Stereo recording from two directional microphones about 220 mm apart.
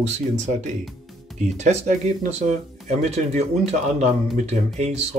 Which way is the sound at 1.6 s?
30° right (ahead or behind).